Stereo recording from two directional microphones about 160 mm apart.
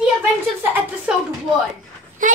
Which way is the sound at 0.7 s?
10° right (ahead or behind).